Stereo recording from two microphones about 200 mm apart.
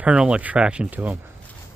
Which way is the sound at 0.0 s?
5° right (ahead or behind).